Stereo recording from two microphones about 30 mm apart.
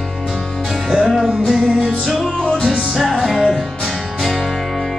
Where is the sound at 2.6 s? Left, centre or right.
Centre.